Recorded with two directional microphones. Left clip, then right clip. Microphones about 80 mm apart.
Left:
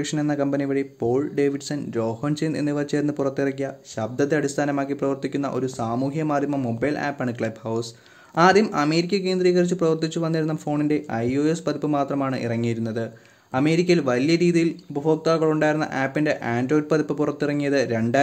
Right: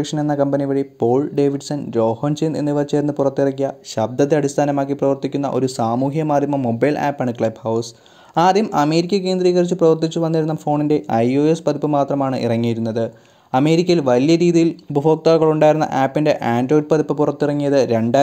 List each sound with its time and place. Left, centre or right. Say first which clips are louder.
0.0 s speech: right 5 dB; right
1.0 s speech: right 6 dB; right
2.4 s speech: right 6 dB; right
4.0 s speech: right 6 dB; right
5.6 s speech: right 7 dB; right
6.0 s speech: right 6 dB; right
6.8 s speech: right 8 dB; right
7.2 s speech: right 7 dB; right
8.4 s speech: right 3 dB; right
11.3 s speech: right 7 dB; right
12.6 s a man's voice: right 6 dB; right
15.2 s speech: right 7 dB; right
15.6 s speech: right 8 dB; right
16.7 s speech: right 5 dB; right